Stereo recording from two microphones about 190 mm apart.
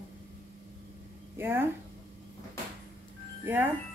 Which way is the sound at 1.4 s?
10° right (ahead or behind).